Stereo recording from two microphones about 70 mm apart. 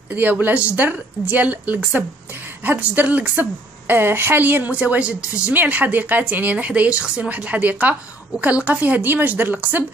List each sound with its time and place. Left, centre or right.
0.1 s a woman's voice: right